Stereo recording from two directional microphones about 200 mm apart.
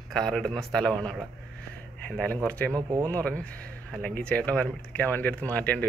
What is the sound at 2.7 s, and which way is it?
Speech, 20° right (ahead or behind).